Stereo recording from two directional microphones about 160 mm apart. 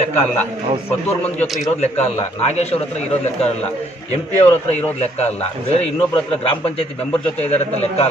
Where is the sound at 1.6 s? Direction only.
45° left (ahead or behind).